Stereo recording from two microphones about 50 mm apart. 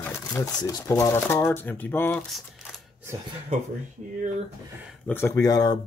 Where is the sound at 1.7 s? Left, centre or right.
Left.